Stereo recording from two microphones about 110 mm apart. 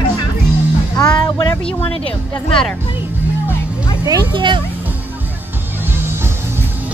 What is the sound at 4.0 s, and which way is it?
Speech, 35° right (ahead or behind).